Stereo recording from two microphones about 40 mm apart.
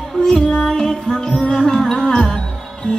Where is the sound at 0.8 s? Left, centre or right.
Centre.